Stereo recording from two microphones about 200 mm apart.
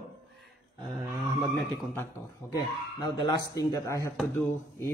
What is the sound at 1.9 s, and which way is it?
A man's voice, 15° left (ahead or behind).